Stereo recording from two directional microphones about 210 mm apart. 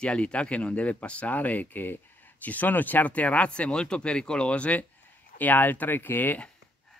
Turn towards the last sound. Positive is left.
turn(degrees=10)  # may be behind; listen again after turning